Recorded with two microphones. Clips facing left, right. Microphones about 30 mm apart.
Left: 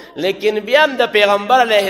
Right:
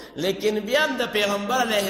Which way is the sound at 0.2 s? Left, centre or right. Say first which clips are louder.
Left 7 dB; left.